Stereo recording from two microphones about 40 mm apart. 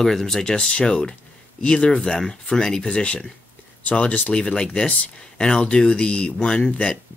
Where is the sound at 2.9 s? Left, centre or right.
Left.